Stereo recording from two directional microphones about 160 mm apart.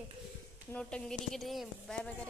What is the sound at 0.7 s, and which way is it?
A woman's voice, 5° left (ahead or behind).